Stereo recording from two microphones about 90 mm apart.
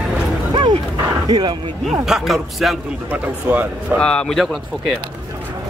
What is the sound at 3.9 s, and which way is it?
Speech, 15° left (ahead or behind).